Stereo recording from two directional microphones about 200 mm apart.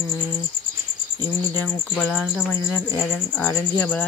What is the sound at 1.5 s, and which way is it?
Speech, 10° left (ahead or behind).